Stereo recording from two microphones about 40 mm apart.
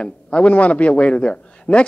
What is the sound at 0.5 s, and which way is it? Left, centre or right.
A man's voice, left.